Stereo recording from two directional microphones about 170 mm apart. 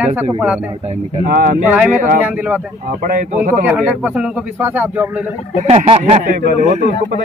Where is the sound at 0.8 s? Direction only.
40° right (ahead or behind).